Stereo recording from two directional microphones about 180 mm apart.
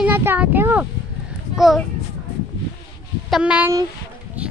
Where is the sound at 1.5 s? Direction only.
Centre (ahead or behind).